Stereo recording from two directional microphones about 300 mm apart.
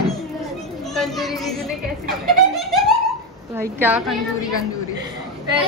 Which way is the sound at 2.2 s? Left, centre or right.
Centre.